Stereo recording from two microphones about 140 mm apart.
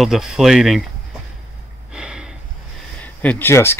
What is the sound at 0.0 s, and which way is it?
Speech, centre (ahead or behind).